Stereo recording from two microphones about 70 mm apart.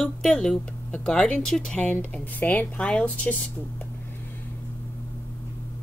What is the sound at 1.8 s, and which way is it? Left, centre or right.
Speech, left.